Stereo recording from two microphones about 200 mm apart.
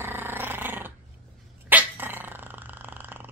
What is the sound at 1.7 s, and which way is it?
Dog, 10° right (ahead or behind).